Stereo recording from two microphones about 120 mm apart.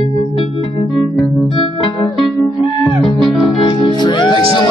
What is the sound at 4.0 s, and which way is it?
Music, 40° left (ahead or behind).